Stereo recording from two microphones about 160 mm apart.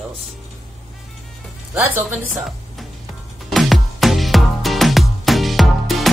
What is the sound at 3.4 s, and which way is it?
Music, centre (ahead or behind).